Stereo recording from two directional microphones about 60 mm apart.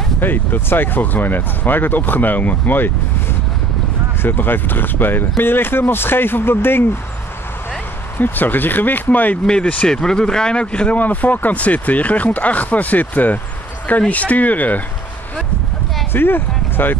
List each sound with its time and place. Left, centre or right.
0.2 s speech: left
8.2 s speech: left
16.1 s speech: left